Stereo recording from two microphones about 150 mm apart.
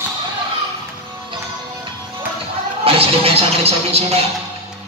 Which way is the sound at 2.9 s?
40° right (ahead or behind).